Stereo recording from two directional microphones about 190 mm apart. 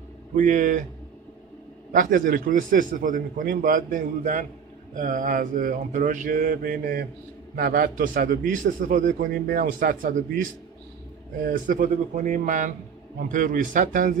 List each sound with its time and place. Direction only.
0.4 s a man's voice: 45° right (ahead or behind)
1.9 s a man's voice: 45° right (ahead or behind)